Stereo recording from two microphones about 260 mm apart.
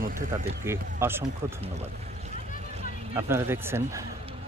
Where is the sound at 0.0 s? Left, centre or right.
Right.